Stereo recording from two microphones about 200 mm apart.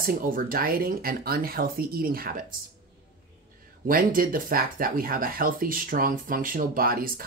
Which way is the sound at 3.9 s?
45° right (ahead or behind).